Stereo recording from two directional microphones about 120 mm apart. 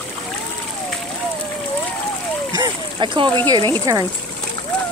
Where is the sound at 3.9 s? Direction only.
25° right (ahead or behind).